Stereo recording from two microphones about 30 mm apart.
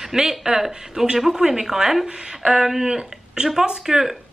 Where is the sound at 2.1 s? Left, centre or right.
Right.